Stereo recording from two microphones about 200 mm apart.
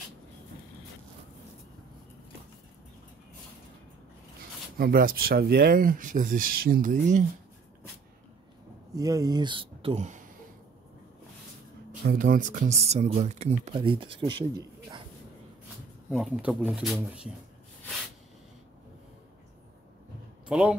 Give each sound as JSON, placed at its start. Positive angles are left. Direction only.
{"t": 4.7, "sound": "speech", "side_deg": -45}
{"t": 8.9, "sound": "speech", "side_deg": -15}
{"t": 12.0, "sound": "speech", "side_deg": -50}
{"t": 16.1, "sound": "speech", "side_deg": -5}
{"t": 20.4, "sound": "speech", "side_deg": -5}